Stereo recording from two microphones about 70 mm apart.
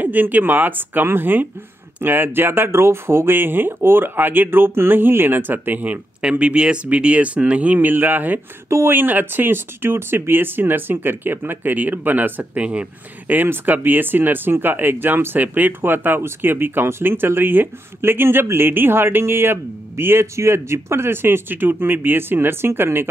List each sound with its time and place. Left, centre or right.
0.0 s speech: right
8.6 s speech: right
8.9 s speech: right